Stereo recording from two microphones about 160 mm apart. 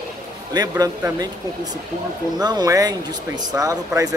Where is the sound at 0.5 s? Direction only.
25° right (ahead or behind).